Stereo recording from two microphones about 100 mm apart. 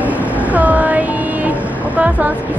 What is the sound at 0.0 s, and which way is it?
Vehicle, 15° right (ahead or behind).